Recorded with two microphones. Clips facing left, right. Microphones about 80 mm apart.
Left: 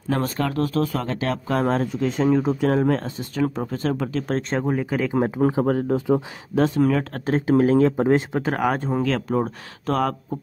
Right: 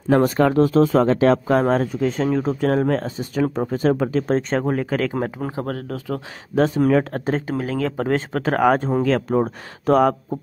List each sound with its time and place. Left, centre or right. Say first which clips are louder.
0.1 s speech: right 8 dB; right
1.0 s speech: right 9 dB; right
1.5 s speech: right 4 dB; centre
6.5 s speech: right 2 dB; centre
7.5 s speech: left 7 dB; left
8.0 s speech: left 2 dB; centre
8.5 s speech: right 10 dB; centre